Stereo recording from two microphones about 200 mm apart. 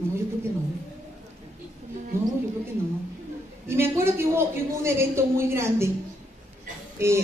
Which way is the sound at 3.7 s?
10° right (ahead or behind).